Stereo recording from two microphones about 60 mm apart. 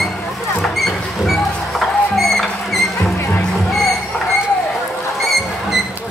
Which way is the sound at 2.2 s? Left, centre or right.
Centre.